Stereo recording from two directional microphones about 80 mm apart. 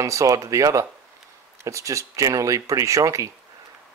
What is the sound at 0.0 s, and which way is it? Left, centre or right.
Speech, right.